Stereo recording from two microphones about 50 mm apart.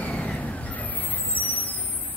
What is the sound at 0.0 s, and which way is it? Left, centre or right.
Vehicle, left.